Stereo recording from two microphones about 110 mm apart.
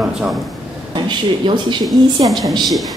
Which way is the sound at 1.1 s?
45° right (ahead or behind).